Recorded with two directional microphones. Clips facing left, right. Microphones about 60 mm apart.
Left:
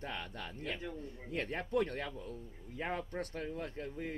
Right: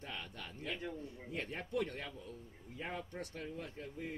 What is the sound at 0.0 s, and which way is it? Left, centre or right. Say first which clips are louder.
Bird: left 4 dB; left.